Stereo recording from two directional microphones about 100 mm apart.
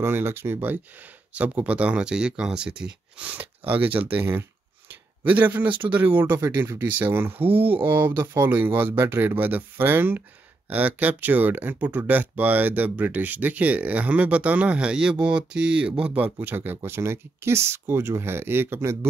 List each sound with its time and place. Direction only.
0.0 s speech: 25° right (ahead or behind)